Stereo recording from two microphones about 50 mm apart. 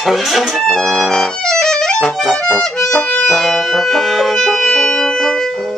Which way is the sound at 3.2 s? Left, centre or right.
Centre.